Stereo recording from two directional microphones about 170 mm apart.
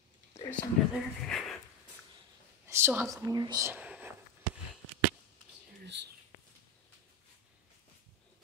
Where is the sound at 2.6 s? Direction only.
15° right (ahead or behind).